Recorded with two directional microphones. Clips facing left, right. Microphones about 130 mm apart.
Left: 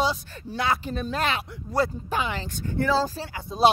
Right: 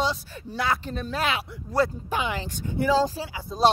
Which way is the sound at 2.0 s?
15° right (ahead or behind).